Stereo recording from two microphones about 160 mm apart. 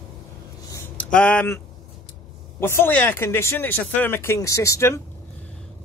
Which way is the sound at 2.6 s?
15° left (ahead or behind).